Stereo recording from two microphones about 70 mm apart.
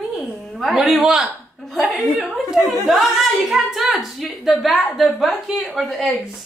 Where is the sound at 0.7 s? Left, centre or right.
Centre.